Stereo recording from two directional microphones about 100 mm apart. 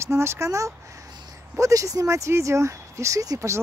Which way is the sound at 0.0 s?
25° right (ahead or behind).